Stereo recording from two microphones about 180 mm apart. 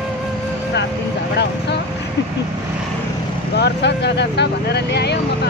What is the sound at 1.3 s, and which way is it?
Speech, 70° left (ahead or behind).